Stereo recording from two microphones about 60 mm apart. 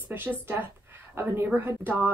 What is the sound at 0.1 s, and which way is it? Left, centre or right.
A woman's voice, right.